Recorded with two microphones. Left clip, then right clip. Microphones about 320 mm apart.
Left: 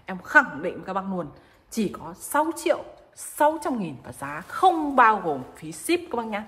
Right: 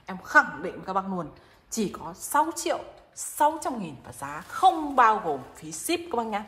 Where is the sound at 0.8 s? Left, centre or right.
Centre.